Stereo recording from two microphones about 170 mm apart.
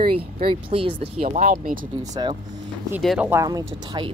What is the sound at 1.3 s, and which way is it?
Speech, 55° right (ahead or behind).